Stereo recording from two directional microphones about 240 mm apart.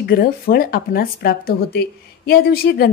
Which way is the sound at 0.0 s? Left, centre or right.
Left.